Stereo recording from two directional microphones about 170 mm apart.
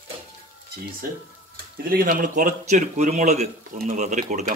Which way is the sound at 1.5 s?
60° right (ahead or behind).